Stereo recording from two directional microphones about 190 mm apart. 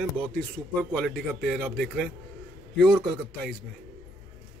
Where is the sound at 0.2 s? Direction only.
5° left (ahead or behind).